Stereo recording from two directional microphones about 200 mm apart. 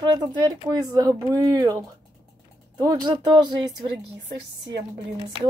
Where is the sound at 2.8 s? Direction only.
20° right (ahead or behind).